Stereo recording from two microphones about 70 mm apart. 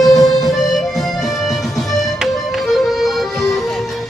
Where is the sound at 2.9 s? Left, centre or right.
Centre.